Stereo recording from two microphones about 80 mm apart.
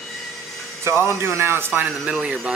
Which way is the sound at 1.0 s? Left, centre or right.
Right.